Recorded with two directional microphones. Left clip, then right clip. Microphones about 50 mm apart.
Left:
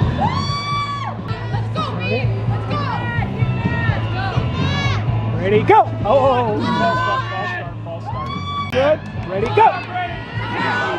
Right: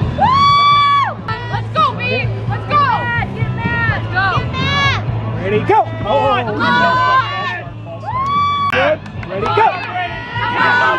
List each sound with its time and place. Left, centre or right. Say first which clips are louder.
0.2 s music: right 14 dB; right
5.4 s vehicle: left 1 dB; left
6.0 s music: even; right
9.4 s chatter: right 1 dB; right